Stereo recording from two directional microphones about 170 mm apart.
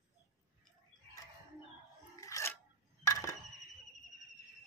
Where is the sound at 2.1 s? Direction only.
20° left (ahead or behind).